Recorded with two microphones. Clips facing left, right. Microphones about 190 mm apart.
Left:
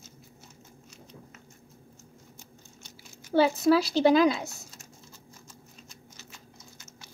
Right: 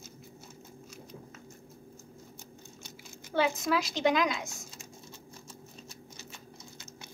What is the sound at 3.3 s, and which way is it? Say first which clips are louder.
A woman's voice: left 7 dB; 35° left (ahead or behind).